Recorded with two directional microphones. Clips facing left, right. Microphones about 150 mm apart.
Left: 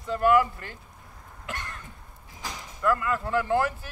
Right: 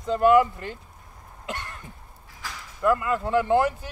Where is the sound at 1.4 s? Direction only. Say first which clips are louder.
Right 3 dB; 20° right (ahead or behind).